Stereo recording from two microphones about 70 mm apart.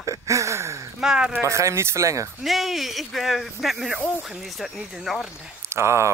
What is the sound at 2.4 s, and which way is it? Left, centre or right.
Speech, centre.